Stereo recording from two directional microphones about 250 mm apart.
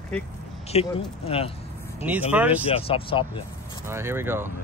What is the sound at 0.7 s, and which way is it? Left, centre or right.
Speech, left.